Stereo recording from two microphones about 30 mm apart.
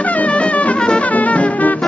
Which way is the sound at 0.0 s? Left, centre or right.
Left.